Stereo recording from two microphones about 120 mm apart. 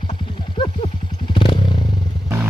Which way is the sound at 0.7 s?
45° left (ahead or behind).